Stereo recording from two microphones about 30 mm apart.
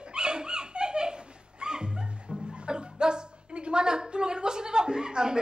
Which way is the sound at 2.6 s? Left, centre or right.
Right.